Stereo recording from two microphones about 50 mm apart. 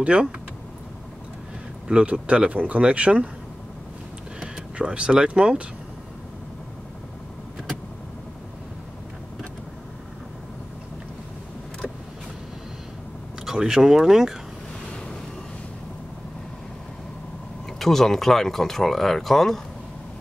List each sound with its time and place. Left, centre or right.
0.0 s speech: right
1.9 s speech: centre
4.4 s speech: right
13.5 s speech: centre
17.7 s speech: centre